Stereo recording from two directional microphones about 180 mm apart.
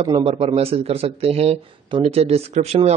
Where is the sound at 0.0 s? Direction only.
30° right (ahead or behind).